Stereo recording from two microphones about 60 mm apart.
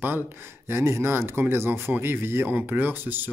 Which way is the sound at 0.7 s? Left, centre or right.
Right.